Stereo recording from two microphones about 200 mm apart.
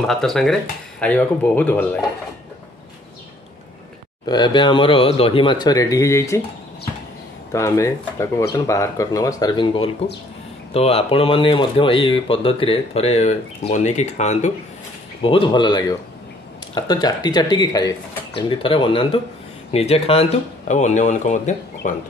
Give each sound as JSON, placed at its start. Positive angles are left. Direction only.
{"t": 0.0, "sound": "speech", "side_deg": 0}
{"t": 4.3, "sound": "speech", "side_deg": 20}
{"t": 7.5, "sound": "speech", "side_deg": 15}
{"t": 15.2, "sound": "speech", "side_deg": 25}